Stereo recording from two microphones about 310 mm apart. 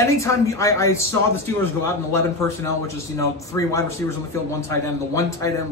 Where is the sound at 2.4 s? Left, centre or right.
Centre.